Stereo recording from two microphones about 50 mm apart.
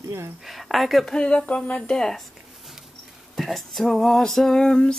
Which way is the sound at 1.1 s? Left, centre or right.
Centre.